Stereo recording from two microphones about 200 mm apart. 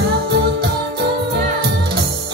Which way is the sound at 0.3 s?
55° right (ahead or behind).